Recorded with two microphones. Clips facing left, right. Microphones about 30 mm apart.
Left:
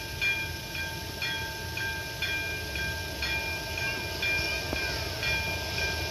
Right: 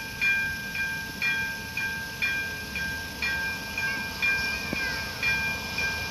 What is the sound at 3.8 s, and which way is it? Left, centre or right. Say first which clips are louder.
Train: right 5 dB; centre.